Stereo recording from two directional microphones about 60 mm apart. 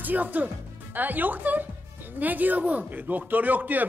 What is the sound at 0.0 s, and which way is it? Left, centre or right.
Speech, right.